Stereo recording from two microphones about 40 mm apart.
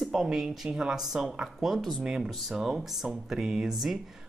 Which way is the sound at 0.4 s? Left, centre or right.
Centre.